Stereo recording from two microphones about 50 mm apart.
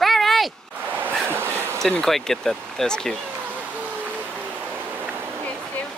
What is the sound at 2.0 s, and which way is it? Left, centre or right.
Speech, centre.